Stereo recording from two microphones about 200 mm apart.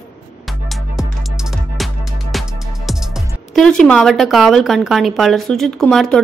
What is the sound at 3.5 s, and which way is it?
A woman's voice, 5° left (ahead or behind).